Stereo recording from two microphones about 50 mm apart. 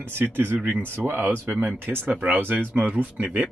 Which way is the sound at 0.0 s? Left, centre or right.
Right.